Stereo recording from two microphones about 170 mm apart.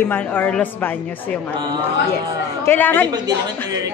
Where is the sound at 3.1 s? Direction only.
25° right (ahead or behind).